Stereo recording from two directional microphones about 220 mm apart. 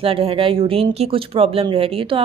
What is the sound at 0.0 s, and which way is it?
Speech, 25° right (ahead or behind).